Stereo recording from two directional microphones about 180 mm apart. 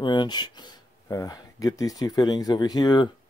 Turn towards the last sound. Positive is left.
turn(degrees=20)  # may be behind; listen again after turning